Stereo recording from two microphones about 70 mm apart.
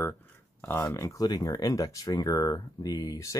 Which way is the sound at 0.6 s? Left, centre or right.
Left.